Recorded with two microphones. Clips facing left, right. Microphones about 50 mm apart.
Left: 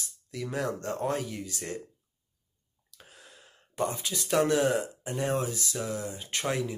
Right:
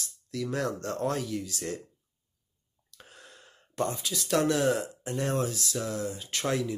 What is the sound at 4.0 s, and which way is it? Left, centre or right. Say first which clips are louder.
Speech: even; left.